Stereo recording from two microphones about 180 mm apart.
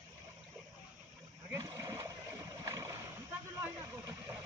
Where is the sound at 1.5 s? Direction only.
15° right (ahead or behind).